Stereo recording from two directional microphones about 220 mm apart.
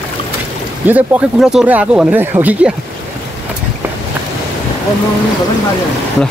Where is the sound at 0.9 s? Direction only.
10° right (ahead or behind).